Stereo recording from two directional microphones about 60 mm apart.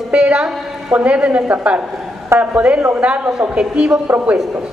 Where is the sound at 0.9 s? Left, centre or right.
Right.